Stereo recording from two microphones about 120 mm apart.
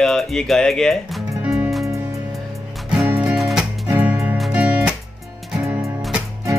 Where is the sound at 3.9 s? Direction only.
25° right (ahead or behind).